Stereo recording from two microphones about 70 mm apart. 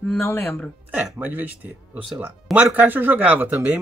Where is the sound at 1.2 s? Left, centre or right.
Right.